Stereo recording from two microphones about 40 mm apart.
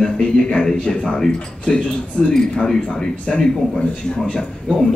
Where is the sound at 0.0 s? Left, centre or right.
Centre.